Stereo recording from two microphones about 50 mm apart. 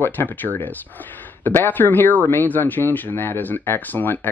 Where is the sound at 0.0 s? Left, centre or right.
Left.